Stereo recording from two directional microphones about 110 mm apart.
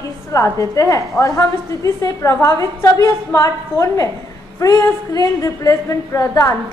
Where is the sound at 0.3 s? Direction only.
30° left (ahead or behind).